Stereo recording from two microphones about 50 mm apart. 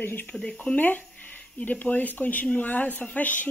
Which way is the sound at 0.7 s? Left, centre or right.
Left.